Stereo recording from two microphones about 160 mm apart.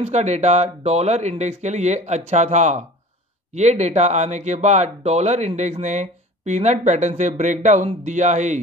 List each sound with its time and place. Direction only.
0.0 s speech: 45° right (ahead or behind)